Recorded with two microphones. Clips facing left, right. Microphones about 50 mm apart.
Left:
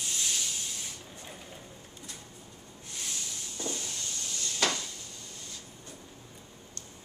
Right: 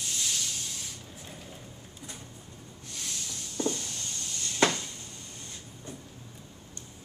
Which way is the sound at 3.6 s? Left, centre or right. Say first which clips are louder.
Right 6 dB; right.